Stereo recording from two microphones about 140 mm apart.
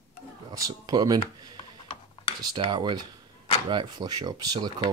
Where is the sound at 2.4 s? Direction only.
35° right (ahead or behind).